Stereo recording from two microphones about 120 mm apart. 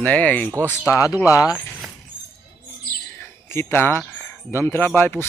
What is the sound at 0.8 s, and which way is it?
Speech, 25° left (ahead or behind).